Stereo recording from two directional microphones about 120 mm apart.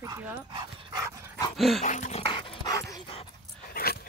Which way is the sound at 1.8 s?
90° left.